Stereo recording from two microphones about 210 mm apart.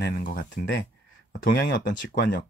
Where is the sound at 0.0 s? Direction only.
45° left (ahead or behind).